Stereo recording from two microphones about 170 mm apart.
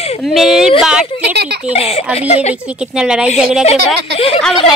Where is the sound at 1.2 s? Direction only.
75° right (ahead or behind).